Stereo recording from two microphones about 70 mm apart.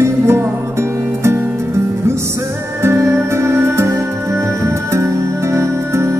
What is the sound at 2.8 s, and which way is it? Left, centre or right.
Music, right.